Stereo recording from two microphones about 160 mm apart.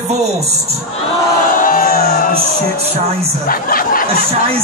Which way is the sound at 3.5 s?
65° left (ahead or behind).